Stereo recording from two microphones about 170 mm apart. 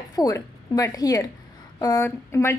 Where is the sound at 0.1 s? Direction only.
20° left (ahead or behind).